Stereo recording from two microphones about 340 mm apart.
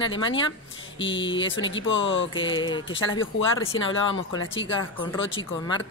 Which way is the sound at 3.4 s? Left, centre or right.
Left.